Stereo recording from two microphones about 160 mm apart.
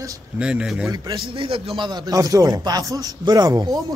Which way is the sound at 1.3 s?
35° right (ahead or behind).